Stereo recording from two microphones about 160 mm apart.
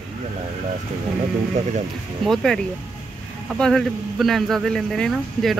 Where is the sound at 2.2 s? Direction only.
Centre (ahead or behind).